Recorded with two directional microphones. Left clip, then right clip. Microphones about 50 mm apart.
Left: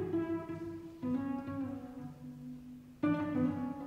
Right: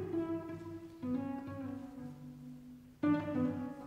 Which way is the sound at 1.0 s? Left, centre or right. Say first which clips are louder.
Left 2 dB; right.